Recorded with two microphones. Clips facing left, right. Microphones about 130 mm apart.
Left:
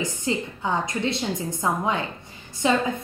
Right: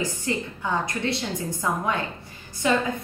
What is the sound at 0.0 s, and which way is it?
A woman's voice, 20° left (ahead or behind).